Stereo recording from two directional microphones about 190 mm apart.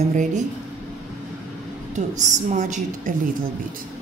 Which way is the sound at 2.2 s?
40° right (ahead or behind).